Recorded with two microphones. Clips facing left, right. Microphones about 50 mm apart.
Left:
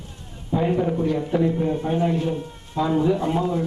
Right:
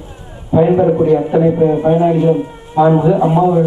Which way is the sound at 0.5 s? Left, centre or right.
Right.